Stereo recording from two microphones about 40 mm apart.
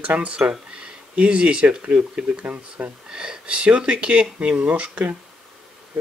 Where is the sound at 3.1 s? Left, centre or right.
Right.